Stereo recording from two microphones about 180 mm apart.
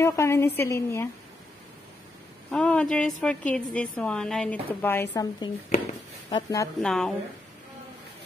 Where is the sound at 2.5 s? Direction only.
5° left (ahead or behind); by 6.6 s 20° left (ahead or behind).